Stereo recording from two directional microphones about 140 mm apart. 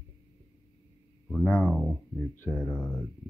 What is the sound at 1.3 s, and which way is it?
Speech, 10° left (ahead or behind).